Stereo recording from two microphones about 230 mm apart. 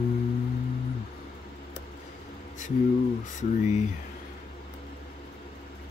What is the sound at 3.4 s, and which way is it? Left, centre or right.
Speech, left.